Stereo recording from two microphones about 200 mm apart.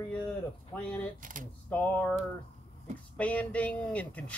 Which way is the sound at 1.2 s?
40° right (ahead or behind).